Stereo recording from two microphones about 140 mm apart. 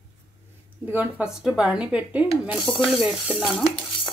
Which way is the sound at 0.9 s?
15° right (ahead or behind).